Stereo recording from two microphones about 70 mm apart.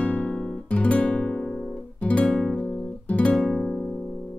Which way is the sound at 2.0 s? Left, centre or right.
Centre.